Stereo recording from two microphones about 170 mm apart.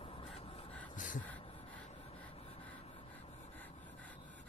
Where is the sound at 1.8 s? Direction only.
45° left (ahead or behind).